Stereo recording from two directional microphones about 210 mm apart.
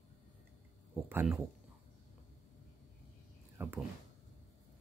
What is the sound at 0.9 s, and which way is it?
Speech, 10° right (ahead or behind).